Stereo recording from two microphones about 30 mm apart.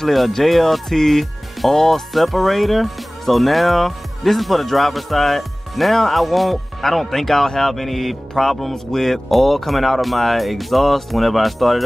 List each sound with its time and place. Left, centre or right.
0.0 s speech: centre
2.1 s speech: centre